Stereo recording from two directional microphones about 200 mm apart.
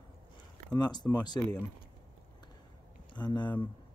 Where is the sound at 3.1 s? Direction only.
20° left (ahead or behind).